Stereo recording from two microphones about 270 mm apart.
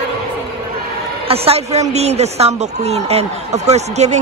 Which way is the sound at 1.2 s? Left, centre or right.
Right.